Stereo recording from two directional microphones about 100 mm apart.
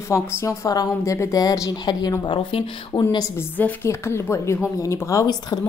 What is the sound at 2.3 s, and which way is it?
Speech, 60° left (ahead or behind).